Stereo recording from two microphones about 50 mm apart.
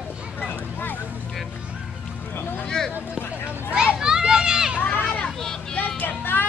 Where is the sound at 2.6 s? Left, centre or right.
Centre.